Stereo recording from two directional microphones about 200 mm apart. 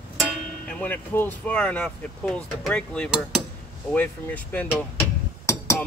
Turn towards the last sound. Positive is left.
turn(degrees=15)  # may be behind; listen again after turning